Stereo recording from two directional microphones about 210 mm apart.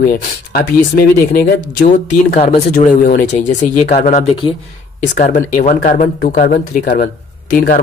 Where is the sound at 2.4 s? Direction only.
35° left (ahead or behind).